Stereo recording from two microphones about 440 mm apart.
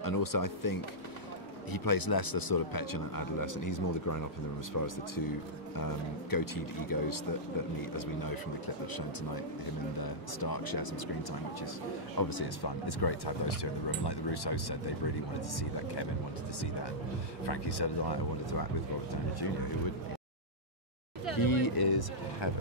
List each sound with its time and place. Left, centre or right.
0.0 s speech: left
9.9 s speech: left
12.2 s speech: left
17.5 s speech: left
21.4 s speech: left